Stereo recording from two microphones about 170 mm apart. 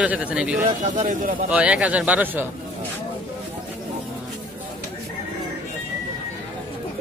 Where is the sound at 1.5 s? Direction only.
5° right (ahead or behind).